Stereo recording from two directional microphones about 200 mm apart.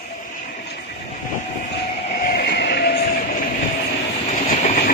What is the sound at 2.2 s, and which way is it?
Music, 55° left (ahead or behind).